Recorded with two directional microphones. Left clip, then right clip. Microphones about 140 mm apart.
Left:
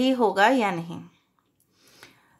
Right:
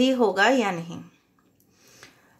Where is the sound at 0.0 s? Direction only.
25° left (ahead or behind).